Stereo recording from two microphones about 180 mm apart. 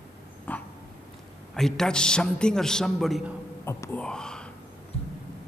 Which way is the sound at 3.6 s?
10° left (ahead or behind).